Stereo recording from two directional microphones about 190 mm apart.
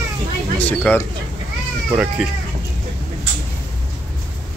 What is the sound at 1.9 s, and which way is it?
Speech, 5° right (ahead or behind).